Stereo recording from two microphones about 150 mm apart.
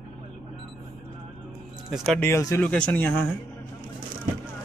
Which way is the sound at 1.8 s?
5° right (ahead or behind).